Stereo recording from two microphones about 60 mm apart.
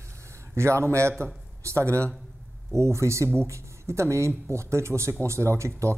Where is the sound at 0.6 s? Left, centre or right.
Right.